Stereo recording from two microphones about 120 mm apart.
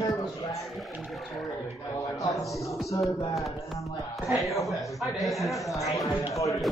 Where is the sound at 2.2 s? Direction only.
30° left (ahead or behind).